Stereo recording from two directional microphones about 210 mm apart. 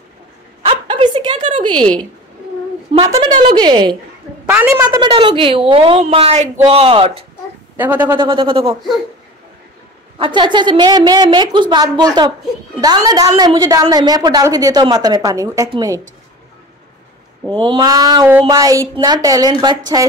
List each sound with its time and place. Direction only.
0.7 s a sound: 25° right (ahead or behind)
2.9 s a woman's voice: 25° right (ahead or behind)
4.5 s speech: 10° right (ahead or behind)
5.0 s a woman's voice: 25° right (ahead or behind)
7.7 s speech: 10° right (ahead or behind)
8.2 s a woman's voice: 25° right (ahead or behind)
10.1 s a woman's voice: 25° right (ahead or behind)
17.6 s speech: 25° right (ahead or behind)